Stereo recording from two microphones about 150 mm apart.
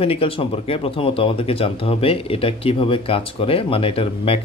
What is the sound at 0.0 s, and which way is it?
Speech, 40° left (ahead or behind).